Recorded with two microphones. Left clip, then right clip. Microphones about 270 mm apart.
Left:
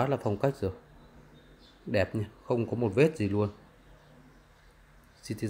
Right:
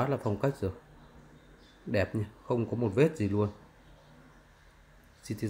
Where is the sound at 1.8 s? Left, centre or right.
Centre.